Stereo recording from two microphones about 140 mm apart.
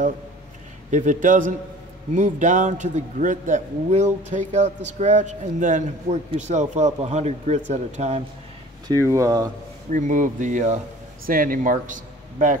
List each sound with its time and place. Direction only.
0.8 s a man's voice: 60° right (ahead or behind)
8.8 s speech: 20° right (ahead or behind)
9.9 s a man's voice: 65° right (ahead or behind)
11.2 s a man's voice: 90° right; by 12.5 s 65° right (ahead or behind)